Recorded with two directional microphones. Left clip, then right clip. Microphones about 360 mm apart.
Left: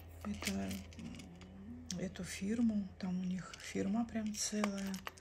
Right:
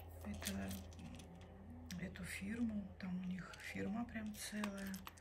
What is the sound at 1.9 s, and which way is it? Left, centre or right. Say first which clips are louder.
Speech: left 5 dB; centre.